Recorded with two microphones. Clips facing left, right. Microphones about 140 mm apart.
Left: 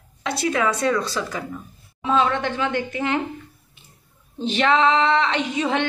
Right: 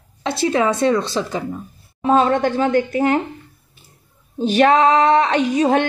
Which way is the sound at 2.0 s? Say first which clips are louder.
Right 5 dB; 45° right (ahead or behind).